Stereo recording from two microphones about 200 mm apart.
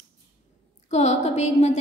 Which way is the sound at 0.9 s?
35° left (ahead or behind).